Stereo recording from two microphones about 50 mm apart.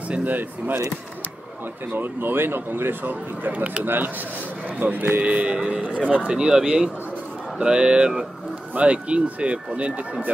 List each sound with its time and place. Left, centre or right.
0.1 s speech: right
1.9 s speech: right
3.1 s speech: right
5.2 s speech: right